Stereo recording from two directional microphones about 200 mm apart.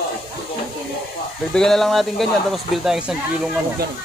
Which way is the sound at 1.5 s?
Centre (ahead or behind).